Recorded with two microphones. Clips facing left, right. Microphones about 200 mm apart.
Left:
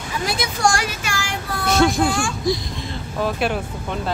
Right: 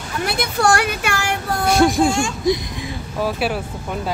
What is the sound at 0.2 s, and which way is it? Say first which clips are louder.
Speech: right 2 dB; 60° right (ahead or behind).